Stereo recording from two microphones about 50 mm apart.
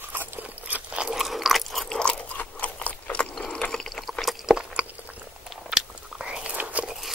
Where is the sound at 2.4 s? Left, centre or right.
Left.